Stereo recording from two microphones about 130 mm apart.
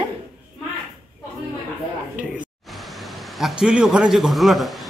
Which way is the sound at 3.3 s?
5° right (ahead or behind).